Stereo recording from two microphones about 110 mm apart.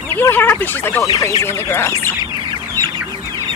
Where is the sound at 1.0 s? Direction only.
30° left (ahead or behind).